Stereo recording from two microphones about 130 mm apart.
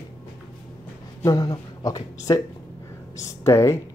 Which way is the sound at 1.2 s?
30° left (ahead or behind).